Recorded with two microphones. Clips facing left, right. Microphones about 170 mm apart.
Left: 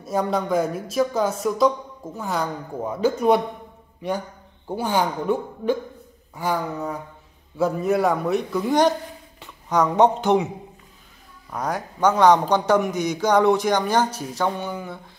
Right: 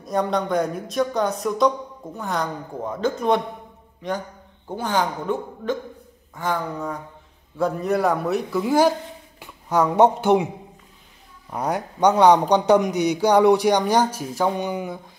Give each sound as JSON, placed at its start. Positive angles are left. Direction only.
{"t": 0.0, "sound": "a man's voice", "side_deg": 5}
{"t": 11.5, "sound": "speech", "side_deg": -15}